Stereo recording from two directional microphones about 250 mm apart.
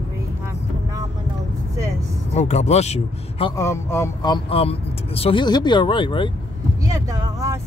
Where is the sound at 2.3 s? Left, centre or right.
Left.